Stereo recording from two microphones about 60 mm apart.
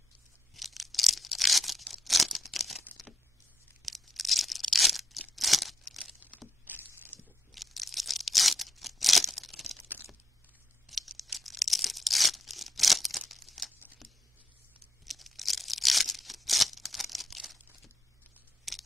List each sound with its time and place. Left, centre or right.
0.6 s tearing: centre
3.8 s tearing: centre
6.6 s a sound: right
7.1 s crunch: left
7.5 s tearing: centre
10.9 s tearing: centre
13.3 s crumpling: centre
15.0 s tearing: centre
18.7 s a sound: centre